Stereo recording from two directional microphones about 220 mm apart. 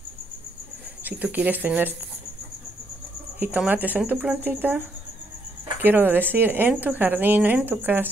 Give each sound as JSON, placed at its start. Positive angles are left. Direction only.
{"t": 1.0, "sound": "speech", "side_deg": -5}
{"t": 3.3, "sound": "speech", "side_deg": -5}